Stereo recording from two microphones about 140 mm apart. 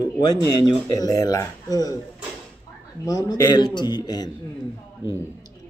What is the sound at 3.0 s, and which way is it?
Speech, 25° left (ahead or behind).